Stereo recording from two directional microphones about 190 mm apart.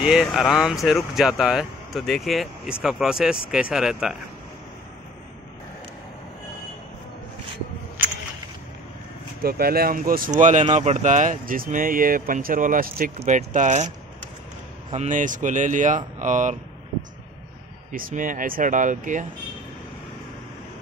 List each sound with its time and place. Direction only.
0.0 s speech: centre (ahead or behind)
9.4 s speech: 55° right (ahead or behind)
13.2 s speech: 35° right (ahead or behind)
14.9 s speech: 40° right (ahead or behind)
17.9 s speech: 45° right (ahead or behind)